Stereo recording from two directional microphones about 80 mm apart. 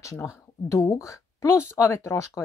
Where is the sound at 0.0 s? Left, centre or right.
Left.